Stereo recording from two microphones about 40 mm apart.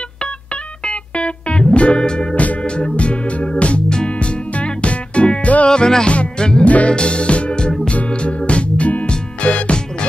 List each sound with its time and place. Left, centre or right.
0.8 s music: left
5.7 s music: centre
6.6 s music: left
7.0 s music: left